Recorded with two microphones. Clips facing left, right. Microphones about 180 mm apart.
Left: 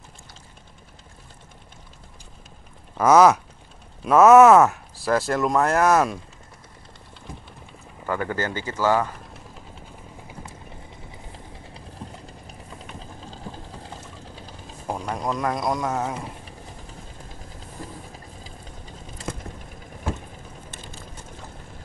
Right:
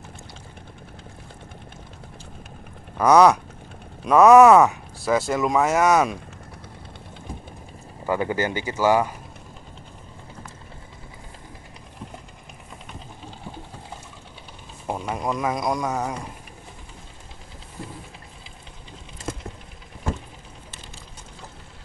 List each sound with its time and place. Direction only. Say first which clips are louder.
3.0 s speech: even; 5° left (ahead or behind)
8.1 s speech: right 3 dB; 15° right (ahead or behind)
14.9 s speech: right 1 dB; 5° right (ahead or behind)